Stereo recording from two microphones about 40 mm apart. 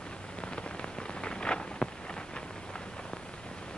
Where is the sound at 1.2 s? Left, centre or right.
Left.